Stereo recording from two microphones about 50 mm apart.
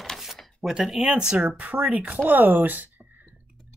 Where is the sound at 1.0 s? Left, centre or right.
Right.